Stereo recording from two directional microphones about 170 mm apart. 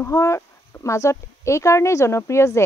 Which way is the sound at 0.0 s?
20° left (ahead or behind).